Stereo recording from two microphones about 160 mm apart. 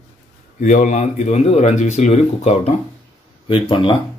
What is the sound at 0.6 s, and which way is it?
Speech, 50° left (ahead or behind).